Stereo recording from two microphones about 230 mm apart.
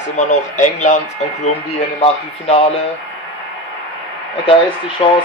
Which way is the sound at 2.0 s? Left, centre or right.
Left.